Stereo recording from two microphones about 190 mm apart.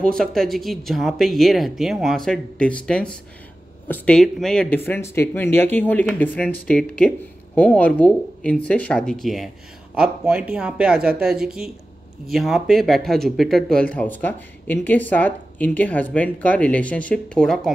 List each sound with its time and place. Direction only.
0.0 s speech: 5° left (ahead or behind)